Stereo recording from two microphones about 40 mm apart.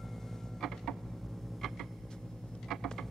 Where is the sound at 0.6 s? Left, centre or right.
Centre.